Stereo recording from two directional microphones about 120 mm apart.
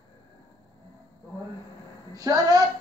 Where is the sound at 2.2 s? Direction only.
30° right (ahead or behind).